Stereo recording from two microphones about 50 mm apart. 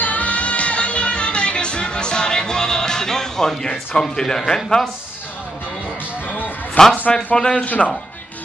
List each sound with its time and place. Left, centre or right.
0.0 s music: left; by 4.8 s centre
6.2 s music: left
7.1 s speech: centre
7.5 s speech: left